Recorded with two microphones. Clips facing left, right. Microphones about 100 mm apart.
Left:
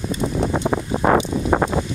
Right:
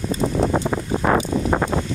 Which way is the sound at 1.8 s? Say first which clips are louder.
Left 2 dB; 20° left (ahead or behind).